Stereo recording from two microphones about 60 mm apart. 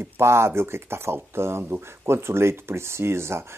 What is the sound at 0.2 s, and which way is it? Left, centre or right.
Speech, right.